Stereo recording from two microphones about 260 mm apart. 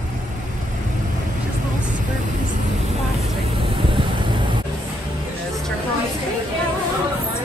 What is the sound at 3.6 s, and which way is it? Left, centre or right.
Vehicle, centre.